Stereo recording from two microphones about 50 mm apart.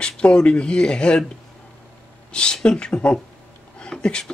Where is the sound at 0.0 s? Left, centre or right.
Left.